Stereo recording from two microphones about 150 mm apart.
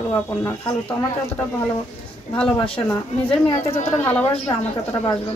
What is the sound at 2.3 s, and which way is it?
Speech, 10° left (ahead or behind).